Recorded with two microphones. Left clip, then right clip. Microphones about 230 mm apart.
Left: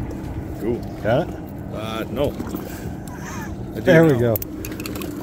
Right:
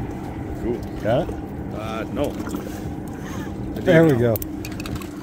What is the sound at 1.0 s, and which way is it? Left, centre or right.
Speech, centre.